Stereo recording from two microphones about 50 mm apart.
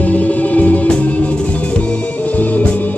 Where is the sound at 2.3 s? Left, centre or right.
Left.